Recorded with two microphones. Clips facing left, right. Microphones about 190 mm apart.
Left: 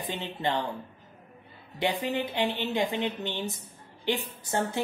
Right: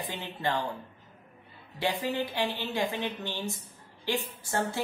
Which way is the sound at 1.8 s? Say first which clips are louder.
Left 1 dB; 20° left (ahead or behind).